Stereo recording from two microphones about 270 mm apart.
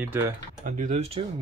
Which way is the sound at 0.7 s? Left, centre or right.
Right.